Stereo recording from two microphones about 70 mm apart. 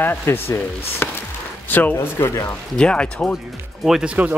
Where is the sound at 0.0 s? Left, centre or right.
Left.